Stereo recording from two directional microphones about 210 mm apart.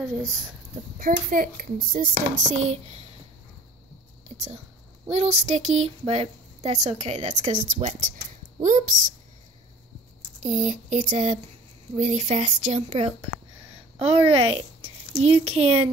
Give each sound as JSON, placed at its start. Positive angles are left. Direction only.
{"t": 0.9, "sound": "speech", "side_deg": -40}
{"t": 5.1, "sound": "a woman's voice", "side_deg": -30}
{"t": 10.4, "sound": "speech", "side_deg": -35}